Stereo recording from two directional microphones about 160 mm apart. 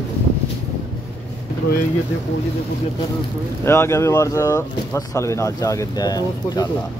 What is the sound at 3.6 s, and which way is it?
Speech, 15° left (ahead or behind).